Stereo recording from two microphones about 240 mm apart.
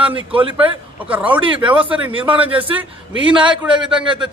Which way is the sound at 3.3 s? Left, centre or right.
Centre.